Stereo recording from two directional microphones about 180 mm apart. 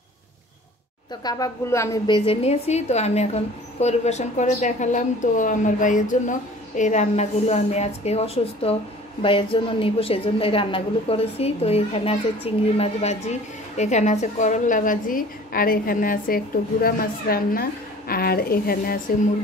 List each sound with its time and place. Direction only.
1.2 s a woman's voice: 15° left (ahead or behind)
2.1 s a woman's voice: 30° left (ahead or behind); by 18.9 s 55° left (ahead or behind)